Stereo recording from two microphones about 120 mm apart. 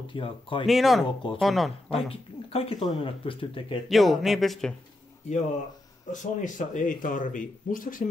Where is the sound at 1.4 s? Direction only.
Centre (ahead or behind).